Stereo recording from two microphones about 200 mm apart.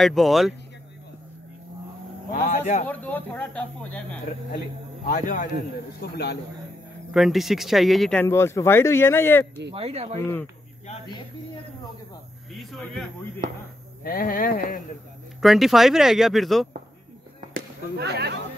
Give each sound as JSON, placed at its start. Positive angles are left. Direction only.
{"t": 0.0, "sound": "speech", "side_deg": 0}
{"t": 2.3, "sound": "a man's voice", "side_deg": 40}
{"t": 2.9, "sound": "speech", "side_deg": 10}
{"t": 5.0, "sound": "a man's voice", "side_deg": 40}
{"t": 7.1, "sound": "speech", "side_deg": 0}
{"t": 9.8, "sound": "speech", "side_deg": -30}
{"t": 12.5, "sound": "speech", "side_deg": 0}
{"t": 14.0, "sound": "speech", "side_deg": 45}
{"t": 15.4, "sound": "speech", "side_deg": 0}
{"t": 17.6, "sound": "speech", "side_deg": -55}